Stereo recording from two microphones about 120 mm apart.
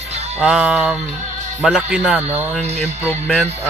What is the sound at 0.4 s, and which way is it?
A man's voice, 5° right (ahead or behind).